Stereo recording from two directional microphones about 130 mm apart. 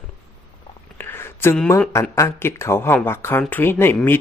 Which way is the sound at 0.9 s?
15° left (ahead or behind).